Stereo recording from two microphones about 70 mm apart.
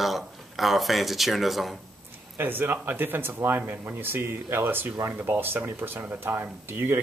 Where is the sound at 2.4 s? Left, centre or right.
Right.